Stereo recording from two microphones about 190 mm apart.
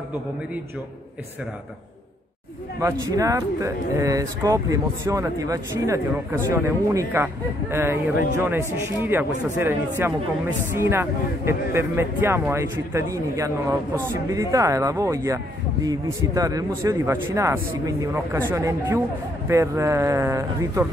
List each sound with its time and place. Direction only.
2.8 s speech: 15° right (ahead or behind)